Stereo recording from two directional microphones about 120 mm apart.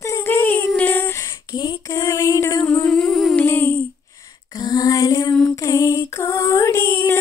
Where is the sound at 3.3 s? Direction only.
15° left (ahead or behind).